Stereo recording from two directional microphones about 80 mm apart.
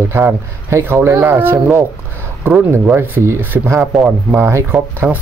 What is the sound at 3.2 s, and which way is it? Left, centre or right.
Speech, right.